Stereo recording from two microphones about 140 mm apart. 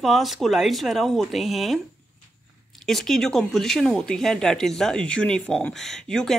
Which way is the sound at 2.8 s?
Centre (ahead or behind).